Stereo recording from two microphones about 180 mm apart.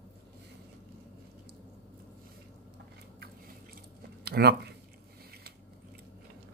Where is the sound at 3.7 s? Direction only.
60° right (ahead or behind).